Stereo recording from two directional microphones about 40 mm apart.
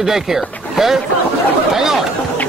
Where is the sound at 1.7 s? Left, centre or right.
Centre.